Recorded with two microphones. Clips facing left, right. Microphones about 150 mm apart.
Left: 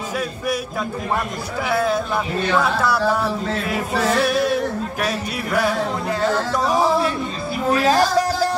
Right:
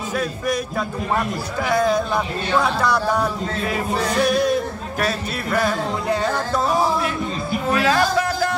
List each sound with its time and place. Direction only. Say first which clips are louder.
1.7 s music: right 2 dB; 5° left (ahead or behind)
4.2 s a sound: right 4 dB; 5° left (ahead or behind)
5.0 s music: right 4 dB; 10° left (ahead or behind)
7.8 s music: left 3 dB; 40° left (ahead or behind)